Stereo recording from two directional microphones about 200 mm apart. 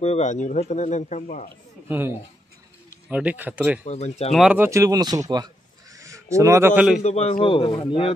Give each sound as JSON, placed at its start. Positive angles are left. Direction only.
{"t": 0.0, "sound": "a man's voice", "side_deg": 35}
{"t": 1.9, "sound": "speech", "side_deg": -10}
{"t": 3.8, "sound": "a man's voice", "side_deg": 35}
{"t": 4.3, "sound": "speech", "side_deg": -5}
{"t": 7.0, "sound": "a man's voice", "side_deg": 30}